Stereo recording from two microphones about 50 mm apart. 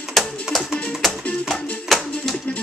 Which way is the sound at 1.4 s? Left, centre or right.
Centre.